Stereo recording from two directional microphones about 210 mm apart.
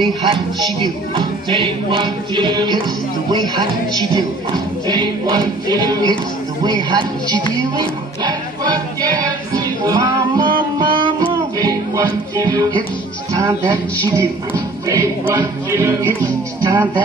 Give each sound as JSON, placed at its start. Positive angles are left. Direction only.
{"t": 0.0, "sound": "speech", "side_deg": -20}
{"t": 8.2, "sound": "music", "side_deg": -20}
{"t": 13.3, "sound": "speech", "side_deg": -15}